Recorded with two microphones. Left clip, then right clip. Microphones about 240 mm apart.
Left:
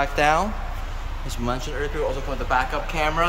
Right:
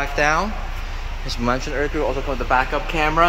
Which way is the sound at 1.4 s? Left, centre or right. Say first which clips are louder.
Right 6 dB; centre.